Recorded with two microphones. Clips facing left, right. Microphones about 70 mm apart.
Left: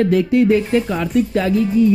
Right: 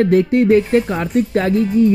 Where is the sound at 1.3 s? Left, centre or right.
Right.